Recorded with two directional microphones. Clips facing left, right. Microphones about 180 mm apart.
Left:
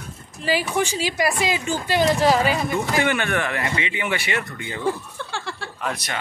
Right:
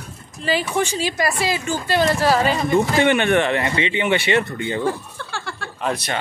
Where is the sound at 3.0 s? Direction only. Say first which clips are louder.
Right 4 dB; 20° right (ahead or behind).